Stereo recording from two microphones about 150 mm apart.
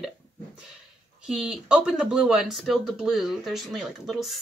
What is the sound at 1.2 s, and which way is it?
Speech, 5° right (ahead or behind).